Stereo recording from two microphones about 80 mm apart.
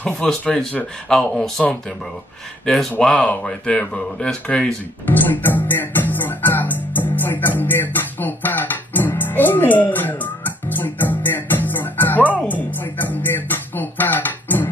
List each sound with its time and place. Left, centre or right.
0.0 s speech: centre
5.0 s music: left